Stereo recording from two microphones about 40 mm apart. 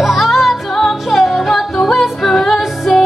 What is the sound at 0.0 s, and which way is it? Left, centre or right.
Music, centre.